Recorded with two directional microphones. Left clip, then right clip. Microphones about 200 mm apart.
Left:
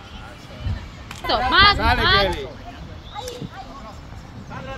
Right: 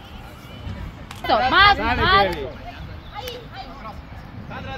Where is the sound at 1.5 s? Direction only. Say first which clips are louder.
Even; 60° right (ahead or behind).